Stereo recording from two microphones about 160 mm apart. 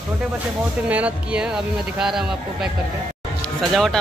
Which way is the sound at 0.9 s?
10° right (ahead or behind).